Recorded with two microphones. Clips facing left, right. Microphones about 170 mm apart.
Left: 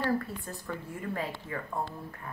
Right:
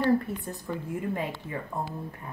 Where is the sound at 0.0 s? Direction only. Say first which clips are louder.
Right 6 dB; 20° right (ahead or behind).